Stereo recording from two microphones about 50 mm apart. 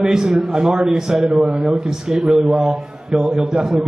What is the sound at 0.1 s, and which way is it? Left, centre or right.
A man's voice, centre.